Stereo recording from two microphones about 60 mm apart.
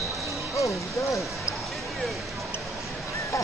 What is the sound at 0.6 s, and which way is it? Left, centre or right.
Speech, left.